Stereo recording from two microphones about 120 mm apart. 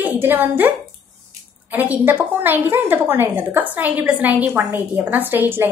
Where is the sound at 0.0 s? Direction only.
15° right (ahead or behind).